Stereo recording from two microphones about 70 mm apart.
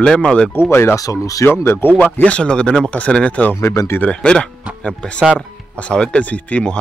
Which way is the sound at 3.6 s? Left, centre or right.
Left.